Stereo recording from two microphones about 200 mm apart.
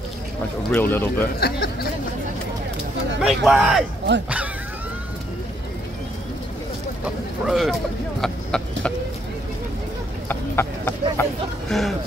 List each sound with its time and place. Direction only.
0.7 s speech: 10° left (ahead or behind)
1.4 s a sound: 50° left (ahead or behind)
3.2 s speech: centre (ahead or behind)
7.4 s speech: centre (ahead or behind)
8.2 s vehicle: 5° left (ahead or behind)
10.2 s clip-clop: 10° left (ahead or behind)
11.7 s speech: centre (ahead or behind)